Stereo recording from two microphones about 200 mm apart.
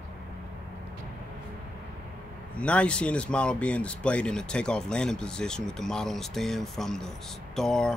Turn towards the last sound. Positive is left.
turn(degrees=5)  # may be behind; listen again after turning